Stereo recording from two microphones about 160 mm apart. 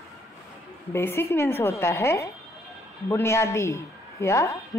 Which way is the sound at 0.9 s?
15° left (ahead or behind).